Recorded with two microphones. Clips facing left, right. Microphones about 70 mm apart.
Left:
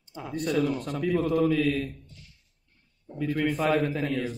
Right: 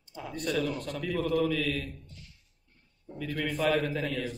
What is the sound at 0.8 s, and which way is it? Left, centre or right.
Mantra, left.